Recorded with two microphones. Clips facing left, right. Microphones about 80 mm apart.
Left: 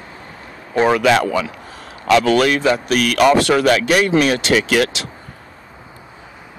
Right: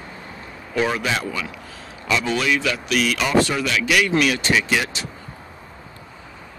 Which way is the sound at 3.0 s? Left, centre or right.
Left.